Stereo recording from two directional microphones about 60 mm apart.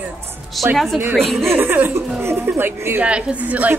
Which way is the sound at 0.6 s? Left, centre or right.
Centre.